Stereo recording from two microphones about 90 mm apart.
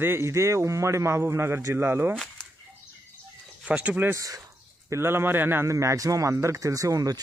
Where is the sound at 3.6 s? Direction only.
15° right (ahead or behind).